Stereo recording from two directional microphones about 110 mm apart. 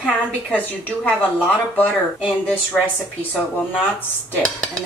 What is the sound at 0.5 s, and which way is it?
Speech, 15° left (ahead or behind).